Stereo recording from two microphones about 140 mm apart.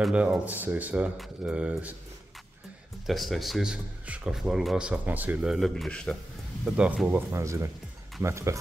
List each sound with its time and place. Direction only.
0.0 s speech: 5° right (ahead or behind)
3.1 s speech: centre (ahead or behind); by 8.5 s 20° right (ahead or behind)